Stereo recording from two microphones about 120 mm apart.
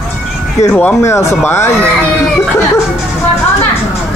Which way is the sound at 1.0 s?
25° left (ahead or behind).